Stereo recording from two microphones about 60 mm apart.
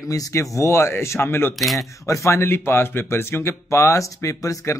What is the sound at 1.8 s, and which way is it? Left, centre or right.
Speech, left.